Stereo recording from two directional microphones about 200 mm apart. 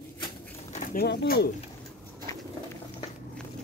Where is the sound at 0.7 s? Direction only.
45° left (ahead or behind).